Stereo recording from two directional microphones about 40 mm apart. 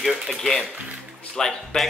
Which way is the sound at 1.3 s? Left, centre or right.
Centre.